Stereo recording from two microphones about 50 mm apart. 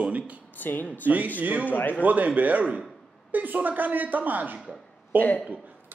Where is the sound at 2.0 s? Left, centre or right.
Right.